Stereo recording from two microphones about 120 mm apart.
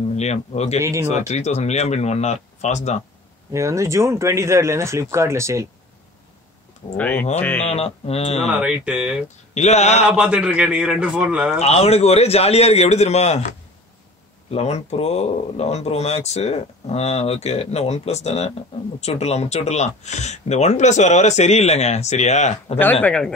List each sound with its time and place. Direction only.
0.0 s speech: 65° left (ahead or behind)
0.7 s speech: 25° right (ahead or behind)
1.0 s speech: 70° left (ahead or behind)
3.5 s speech: 25° right (ahead or behind)
7.0 s speech: 15° left (ahead or behind)
7.6 s speech: 60° left (ahead or behind)
8.5 s a man's voice: 10° right (ahead or behind)
9.5 s speech: 70° left (ahead or behind)
10.1 s a man's voice: 10° right (ahead or behind)
11.6 s speech: 60° left (ahead or behind); by 13.6 s 80° left
14.5 s speech: 60° left (ahead or behind)
23.0 s speech: 10° left (ahead or behind)